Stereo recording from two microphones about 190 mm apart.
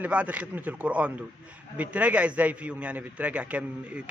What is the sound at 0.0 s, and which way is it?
A man's voice, 5° right (ahead or behind).